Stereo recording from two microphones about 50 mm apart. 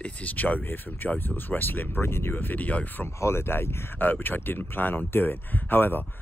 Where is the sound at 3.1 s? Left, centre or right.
Left.